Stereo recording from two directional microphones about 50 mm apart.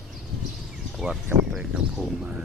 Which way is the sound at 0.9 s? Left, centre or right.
Centre.